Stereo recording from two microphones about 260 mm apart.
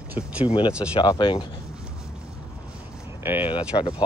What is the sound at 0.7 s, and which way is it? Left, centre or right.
Speech, centre.